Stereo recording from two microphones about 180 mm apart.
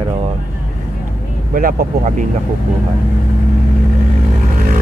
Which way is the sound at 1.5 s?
45° right (ahead or behind).